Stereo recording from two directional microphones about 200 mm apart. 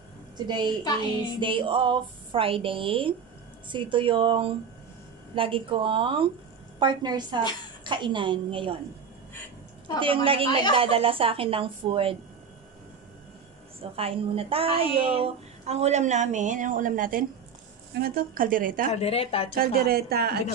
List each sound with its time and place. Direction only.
0.5 s speech: 20° right (ahead or behind)
9.9 s speech: 25° right (ahead or behind)
13.7 s a woman's voice: 30° right (ahead or behind)
18.9 s speech: 30° left (ahead or behind)
19.5 s a woman's voice: 50° right (ahead or behind)